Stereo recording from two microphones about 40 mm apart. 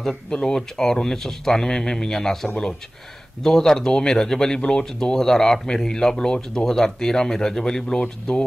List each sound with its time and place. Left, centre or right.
0.3 s speech: left